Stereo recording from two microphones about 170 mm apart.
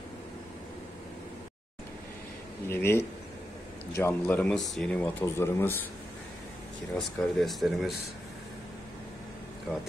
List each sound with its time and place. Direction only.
2.7 s speech: 15° left (ahead or behind)
7.2 s speech: centre (ahead or behind)